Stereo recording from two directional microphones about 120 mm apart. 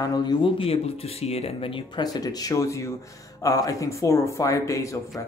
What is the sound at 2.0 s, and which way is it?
Speech, 30° left (ahead or behind).